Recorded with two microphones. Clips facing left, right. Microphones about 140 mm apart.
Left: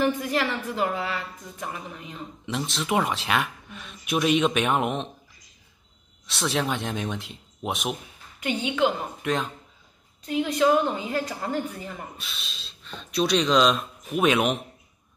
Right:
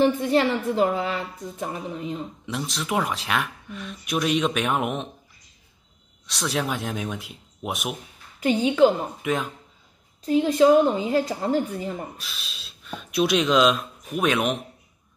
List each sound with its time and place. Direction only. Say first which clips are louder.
0.0 s a woman's voice: right 5 dB; 30° right (ahead or behind)
2.4 s speech: left 5 dB; centre (ahead or behind)
6.2 s speech: even; centre (ahead or behind)
8.4 s a woman's voice: right 7 dB; 35° right (ahead or behind)
9.2 s speech: even; 5° right (ahead or behind)
10.2 s a woman's voice: right 5 dB; 35° right (ahead or behind)
12.2 s speech: even; centre (ahead or behind)